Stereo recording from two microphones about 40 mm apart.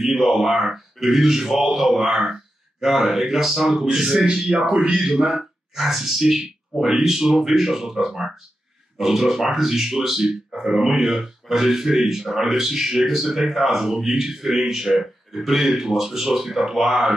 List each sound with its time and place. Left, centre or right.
0.0 s speech: centre; by 4.9 s right
4.9 s speech: centre